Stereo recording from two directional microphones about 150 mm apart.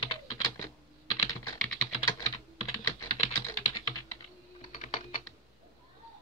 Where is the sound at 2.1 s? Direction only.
25° left (ahead or behind).